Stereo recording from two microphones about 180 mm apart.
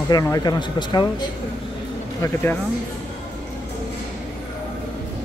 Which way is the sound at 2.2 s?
10° left (ahead or behind).